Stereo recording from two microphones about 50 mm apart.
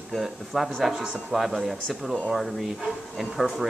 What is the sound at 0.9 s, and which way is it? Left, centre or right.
Speech, centre.